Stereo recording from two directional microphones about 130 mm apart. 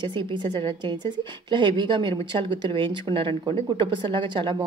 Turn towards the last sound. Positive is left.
turn(degrees=-40)  # may be behind; listen again after turning